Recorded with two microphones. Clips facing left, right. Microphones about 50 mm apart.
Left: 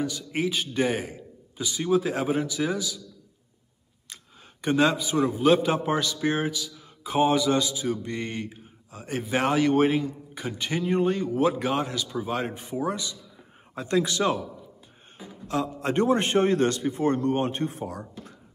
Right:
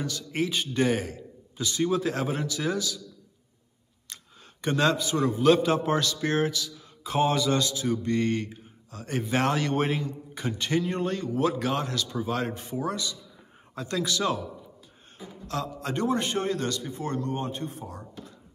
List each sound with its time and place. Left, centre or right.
0.0 s a man's voice: centre
4.1 s a man's voice: centre; by 18.3 s left